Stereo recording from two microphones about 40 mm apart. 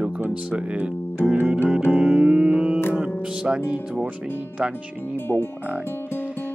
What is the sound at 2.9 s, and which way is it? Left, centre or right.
Speech, right.